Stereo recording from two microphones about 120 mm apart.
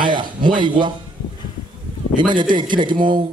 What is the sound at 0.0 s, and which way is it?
Speech, 40° right (ahead or behind).